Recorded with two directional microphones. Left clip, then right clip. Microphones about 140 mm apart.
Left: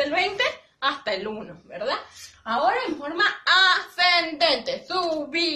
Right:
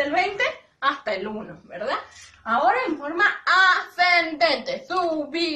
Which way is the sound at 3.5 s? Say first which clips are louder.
Even; 30° left (ahead or behind).